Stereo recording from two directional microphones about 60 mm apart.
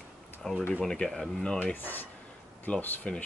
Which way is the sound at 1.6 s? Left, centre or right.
Left.